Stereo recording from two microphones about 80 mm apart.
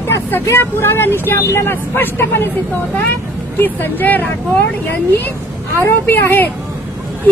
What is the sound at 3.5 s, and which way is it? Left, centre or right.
Speech, left.